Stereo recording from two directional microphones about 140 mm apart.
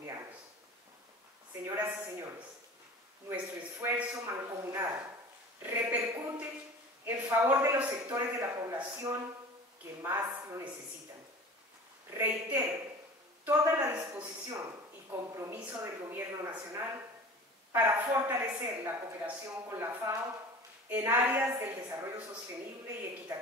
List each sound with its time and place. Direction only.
1.6 s a sound: 20° right (ahead or behind)
3.8 s a man's voice: 15° right (ahead or behind)
12.1 s a woman's voice: 15° right (ahead or behind)